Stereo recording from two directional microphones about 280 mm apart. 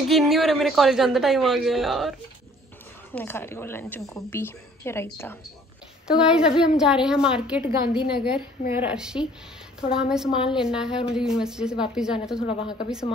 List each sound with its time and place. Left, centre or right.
0.1 s a woman's voice: centre
6.0 s a woman's voice: centre
12.4 s speech: centre